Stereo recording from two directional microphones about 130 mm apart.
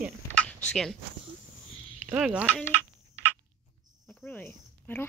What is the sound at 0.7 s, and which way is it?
Speech, 5° left (ahead or behind).